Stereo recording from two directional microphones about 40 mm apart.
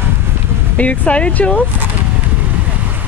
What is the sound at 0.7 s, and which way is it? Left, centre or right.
Speech, left.